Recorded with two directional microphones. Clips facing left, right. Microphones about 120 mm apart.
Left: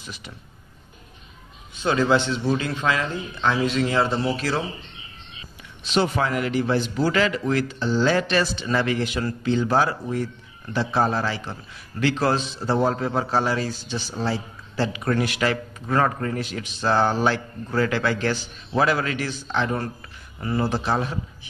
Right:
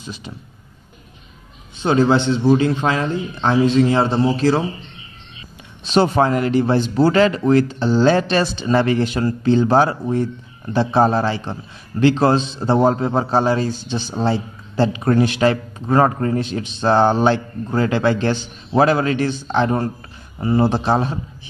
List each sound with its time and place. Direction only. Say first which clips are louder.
1.8 s speech: right 5 dB; 25° right (ahead or behind)
5.9 s speech: right 7 dB; 35° right (ahead or behind)